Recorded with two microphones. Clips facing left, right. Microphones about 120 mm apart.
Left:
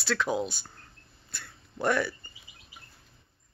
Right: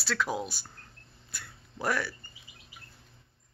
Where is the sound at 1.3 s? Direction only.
10° right (ahead or behind).